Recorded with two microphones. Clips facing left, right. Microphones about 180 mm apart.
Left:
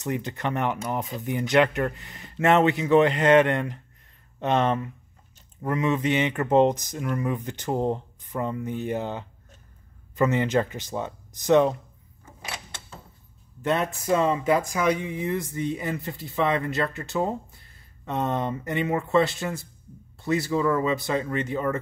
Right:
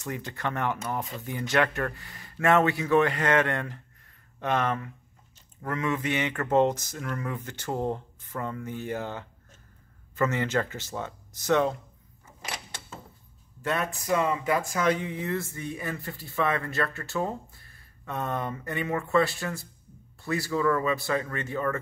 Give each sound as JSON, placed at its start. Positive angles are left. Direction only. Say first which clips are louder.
{"t": 0.0, "sound": "speech", "louder": "left 4 dB", "side_deg": 20}
{"t": 13.6, "sound": "speech", "louder": "left 4 dB", "side_deg": 20}